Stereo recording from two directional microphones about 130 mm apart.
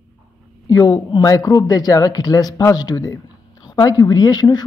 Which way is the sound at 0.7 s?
30° left (ahead or behind).